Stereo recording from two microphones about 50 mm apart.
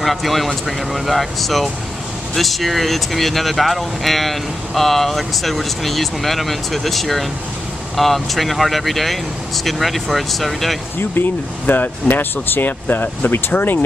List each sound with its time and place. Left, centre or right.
0.0 s speech: centre
11.0 s speech: left